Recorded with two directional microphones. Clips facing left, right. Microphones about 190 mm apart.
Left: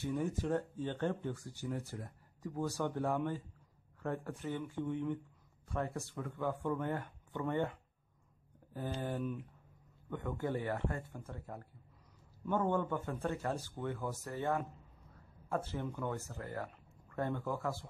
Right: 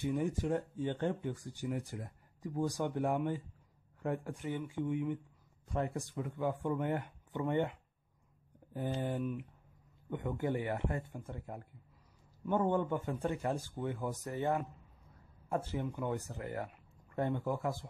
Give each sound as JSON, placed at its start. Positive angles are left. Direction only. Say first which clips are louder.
{"t": 0.0, "sound": "a man's voice", "louder": "right 2 dB", "side_deg": -15}
{"t": 8.7, "sound": "a man's voice", "louder": "right 3 dB", "side_deg": -20}